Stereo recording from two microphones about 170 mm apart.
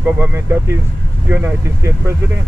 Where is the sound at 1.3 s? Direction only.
15° right (ahead or behind).